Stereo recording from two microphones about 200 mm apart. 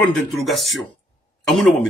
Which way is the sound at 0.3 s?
Centre (ahead or behind).